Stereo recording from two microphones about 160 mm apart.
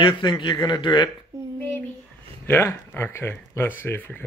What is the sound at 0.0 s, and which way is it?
Speech, 30° left (ahead or behind).